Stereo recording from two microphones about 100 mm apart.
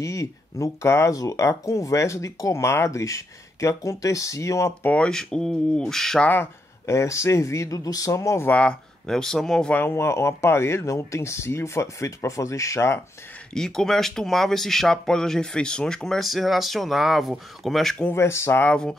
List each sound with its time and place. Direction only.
0.0 s speech: 35° left (ahead or behind)
4.8 s speech: 10° left (ahead or behind)
6.2 s speech: 20° left (ahead or behind)
8.5 s speech: 10° left (ahead or behind)
9.8 s speech: 25° left (ahead or behind)
13.5 s speech: 5° left (ahead or behind)
18.1 s speech: 25° left (ahead or behind)